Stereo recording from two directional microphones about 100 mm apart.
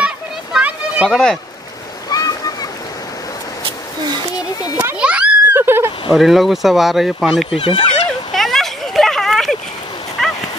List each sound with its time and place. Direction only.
0.0 s a sound: 10° right (ahead or behind)
1.0 s speech: 5° left (ahead or behind)
2.0 s splash: 40° left (ahead or behind)
4.9 s children playing: 10° right (ahead or behind)
5.6 s a sound: 25° right (ahead or behind)
6.1 s speech: centre (ahead or behind)
7.5 s speech: 60° left (ahead or behind)
8.3 s a sound: centre (ahead or behind)
10.2 s dog: 5° left (ahead or behind)